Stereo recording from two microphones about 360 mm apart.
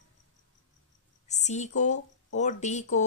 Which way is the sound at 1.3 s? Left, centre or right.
Centre.